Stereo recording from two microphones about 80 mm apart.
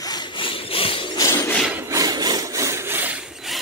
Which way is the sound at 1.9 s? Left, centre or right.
Right.